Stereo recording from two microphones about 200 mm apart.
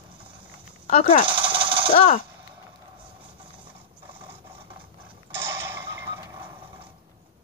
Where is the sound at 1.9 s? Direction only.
40° left (ahead or behind).